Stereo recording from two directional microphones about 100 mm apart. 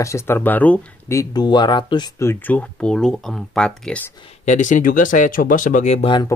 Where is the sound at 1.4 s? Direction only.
50° left (ahead or behind).